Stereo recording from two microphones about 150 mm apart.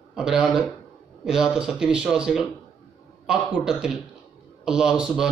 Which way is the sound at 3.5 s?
5° right (ahead or behind).